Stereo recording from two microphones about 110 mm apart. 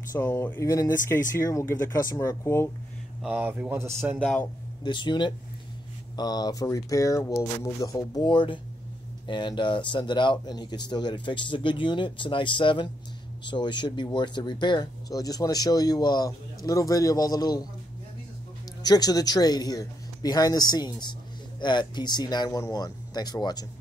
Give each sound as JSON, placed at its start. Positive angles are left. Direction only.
{"t": 0.1, "sound": "speech", "side_deg": 25}
{"t": 3.2, "sound": "speech", "side_deg": -10}
{"t": 3.7, "sound": "speech", "side_deg": -25}
{"t": 4.2, "sound": "speech", "side_deg": 10}
{"t": 4.8, "sound": "speech", "side_deg": 45}
{"t": 8.3, "sound": "speech", "side_deg": 45}
{"t": 18.8, "sound": "speech", "side_deg": 35}